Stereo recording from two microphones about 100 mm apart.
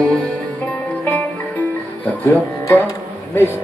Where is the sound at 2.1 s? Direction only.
15° left (ahead or behind).